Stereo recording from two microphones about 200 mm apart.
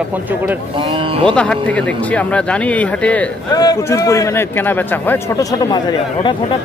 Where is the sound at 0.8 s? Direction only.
25° right (ahead or behind).